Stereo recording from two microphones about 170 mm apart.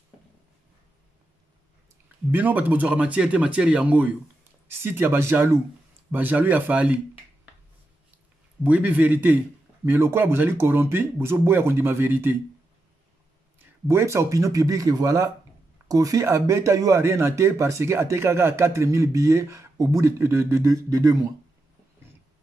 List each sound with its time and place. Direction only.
2.3 s speech: 10° right (ahead or behind)
8.6 s speech: 10° right (ahead or behind)
13.6 s speech: 15° right (ahead or behind)